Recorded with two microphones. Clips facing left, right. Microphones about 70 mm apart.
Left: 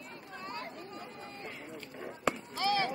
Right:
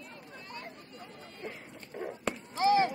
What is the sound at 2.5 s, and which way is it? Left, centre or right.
Chop, right.